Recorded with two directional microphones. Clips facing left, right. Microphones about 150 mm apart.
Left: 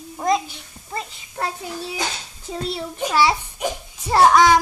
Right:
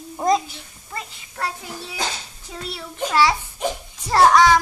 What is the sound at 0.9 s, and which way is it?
Speech, 25° left (ahead or behind).